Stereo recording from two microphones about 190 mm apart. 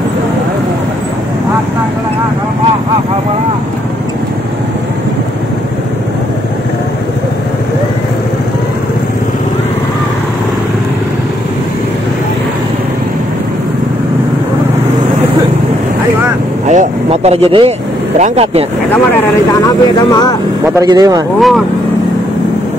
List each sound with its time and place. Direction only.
16.6 s speech: 35° right (ahead or behind)
19.6 s speech: 20° left (ahead or behind)
20.8 s speech: 20° right (ahead or behind)
21.4 s speech: centre (ahead or behind)